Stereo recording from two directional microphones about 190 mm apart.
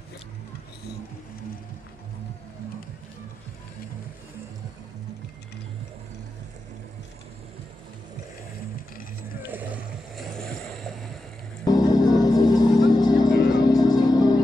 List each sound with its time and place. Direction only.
9.4 s vehicle: 10° right (ahead or behind)
10.3 s vehicle: centre (ahead or behind)
11.6 s music: 20° left (ahead or behind)